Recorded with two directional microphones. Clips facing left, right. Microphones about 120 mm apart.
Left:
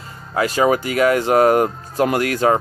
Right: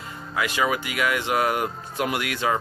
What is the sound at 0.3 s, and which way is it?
Speech, 40° left (ahead or behind).